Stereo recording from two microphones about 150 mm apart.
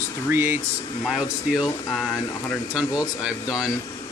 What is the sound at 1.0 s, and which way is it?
Speech, 5° right (ahead or behind).